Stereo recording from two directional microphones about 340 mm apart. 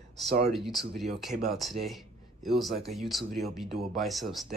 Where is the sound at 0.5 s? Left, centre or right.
Centre.